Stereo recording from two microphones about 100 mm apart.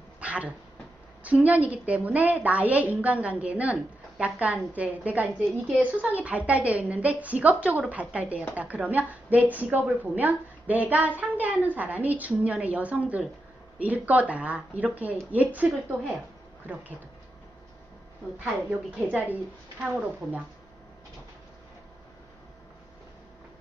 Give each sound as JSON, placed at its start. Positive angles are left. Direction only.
{"t": 0.2, "sound": "dog", "side_deg": -10}
{"t": 1.2, "sound": "a woman's voice", "side_deg": -15}
{"t": 18.4, "sound": "a woman's voice", "side_deg": -15}